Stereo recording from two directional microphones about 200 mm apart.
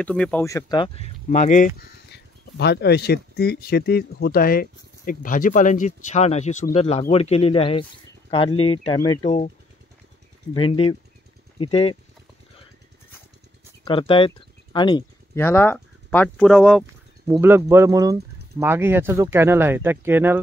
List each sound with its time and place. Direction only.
0.0 s speech: 5° left (ahead or behind); by 1.7 s 40° left (ahead or behind)
2.1 s speech: 55° left (ahead or behind); by 9.5 s 30° left (ahead or behind)
10.5 s speech: 25° left (ahead or behind)
13.8 s speech: 25° left (ahead or behind)
15.3 s speech: 10° left (ahead or behind)
17.3 s speech: 10° right (ahead or behind)